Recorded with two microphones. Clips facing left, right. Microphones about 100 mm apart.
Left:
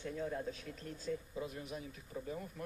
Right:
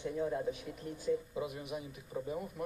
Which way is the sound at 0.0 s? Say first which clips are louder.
Right 5 dB; 15° right (ahead or behind).